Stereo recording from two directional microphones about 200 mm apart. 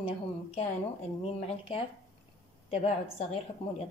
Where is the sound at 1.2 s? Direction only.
30° left (ahead or behind).